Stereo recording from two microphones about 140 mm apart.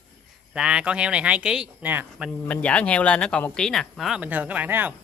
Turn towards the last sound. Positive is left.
turn(degrees=-15)  # may be behind; listen again after turning